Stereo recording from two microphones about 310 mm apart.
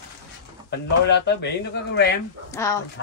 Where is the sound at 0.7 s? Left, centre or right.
Left.